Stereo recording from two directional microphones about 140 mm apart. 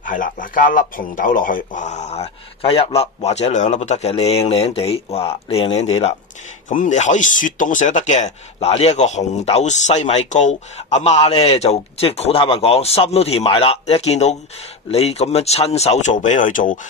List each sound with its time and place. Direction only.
0.0 s speech: 70° left (ahead or behind); by 6.1 s 45° left (ahead or behind)
6.7 s speech: 65° left (ahead or behind)